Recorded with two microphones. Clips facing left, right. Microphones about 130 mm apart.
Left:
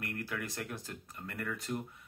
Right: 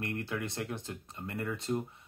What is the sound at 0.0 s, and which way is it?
Speech, 25° right (ahead or behind).